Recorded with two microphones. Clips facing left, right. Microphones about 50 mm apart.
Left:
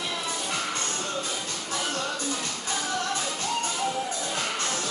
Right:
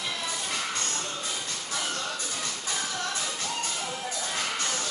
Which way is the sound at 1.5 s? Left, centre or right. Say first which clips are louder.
Left 2 dB; left.